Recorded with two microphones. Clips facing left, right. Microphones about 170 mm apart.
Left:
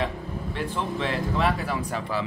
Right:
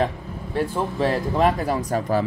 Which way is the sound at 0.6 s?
45° right (ahead or behind).